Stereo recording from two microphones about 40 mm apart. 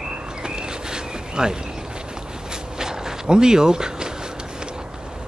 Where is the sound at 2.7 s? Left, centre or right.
Centre.